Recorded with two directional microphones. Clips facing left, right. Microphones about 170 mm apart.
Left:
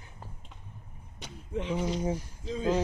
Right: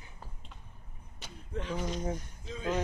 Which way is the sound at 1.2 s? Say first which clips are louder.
Left 5 dB; 20° left (ahead or behind).